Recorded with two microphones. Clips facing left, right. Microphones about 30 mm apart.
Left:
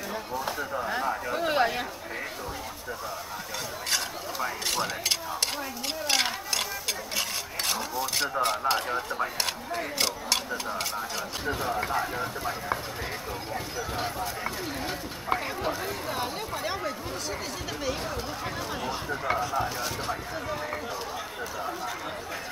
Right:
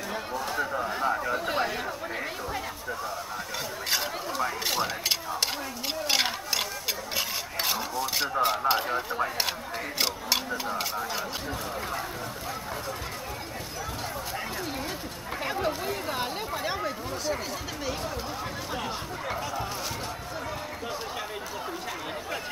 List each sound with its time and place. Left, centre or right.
1.0 s speech: centre
1.3 s speech: centre
3.9 s a sound: centre
10.5 s speech: centre
11.4 s speech: centre
15.6 s a sound: centre
19.5 s speech: centre